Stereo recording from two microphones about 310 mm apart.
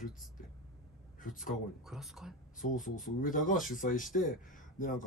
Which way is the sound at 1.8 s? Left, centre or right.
Centre.